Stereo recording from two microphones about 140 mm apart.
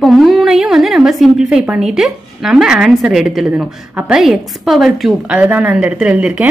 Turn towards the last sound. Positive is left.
turn(degrees=-10)  # may be behind; listen again after turning